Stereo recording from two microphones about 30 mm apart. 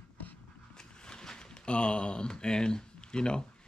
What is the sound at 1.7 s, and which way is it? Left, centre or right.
Speech, left.